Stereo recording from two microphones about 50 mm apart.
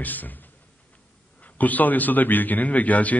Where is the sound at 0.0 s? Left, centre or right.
Left.